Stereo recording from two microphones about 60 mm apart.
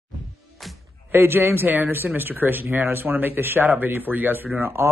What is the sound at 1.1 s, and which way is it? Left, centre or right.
Speech, right.